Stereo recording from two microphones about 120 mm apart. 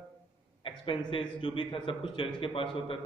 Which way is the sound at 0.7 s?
45° left (ahead or behind).